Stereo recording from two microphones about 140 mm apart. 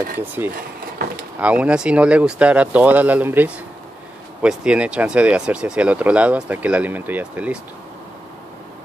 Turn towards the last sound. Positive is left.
turn(degrees=-10)  # may be behind; listen again after turning